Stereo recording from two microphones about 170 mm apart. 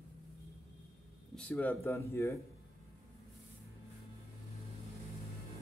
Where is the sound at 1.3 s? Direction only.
10° left (ahead or behind).